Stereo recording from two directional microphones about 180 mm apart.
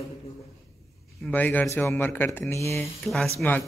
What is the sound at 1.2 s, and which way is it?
A man's voice, 10° left (ahead or behind).